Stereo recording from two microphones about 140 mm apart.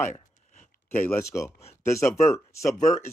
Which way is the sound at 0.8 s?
15° left (ahead or behind).